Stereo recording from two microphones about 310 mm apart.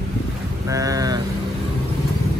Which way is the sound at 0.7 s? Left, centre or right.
Centre.